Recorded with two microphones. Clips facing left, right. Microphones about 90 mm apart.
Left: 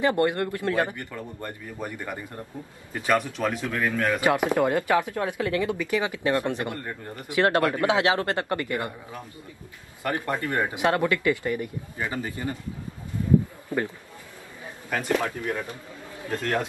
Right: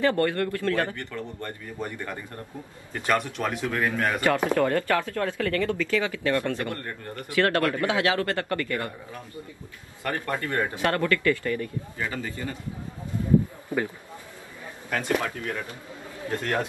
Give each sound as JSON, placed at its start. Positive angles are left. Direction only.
{"t": 0.0, "sound": "a man's voice", "side_deg": 20}
{"t": 3.7, "sound": "speech", "side_deg": -15}
{"t": 4.2, "sound": "speech", "side_deg": 15}
{"t": 13.7, "sound": "a man's voice", "side_deg": -20}
{"t": 14.9, "sound": "speech", "side_deg": 10}
{"t": 15.2, "sound": "speech", "side_deg": 20}